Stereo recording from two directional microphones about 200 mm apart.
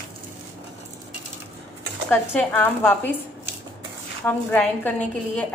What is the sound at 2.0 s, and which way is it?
A woman's voice, 10° left (ahead or behind).